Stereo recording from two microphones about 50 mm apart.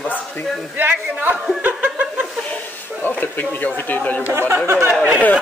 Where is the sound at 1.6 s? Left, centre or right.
Right.